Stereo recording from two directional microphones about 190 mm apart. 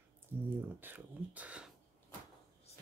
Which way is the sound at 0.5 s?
10° right (ahead or behind).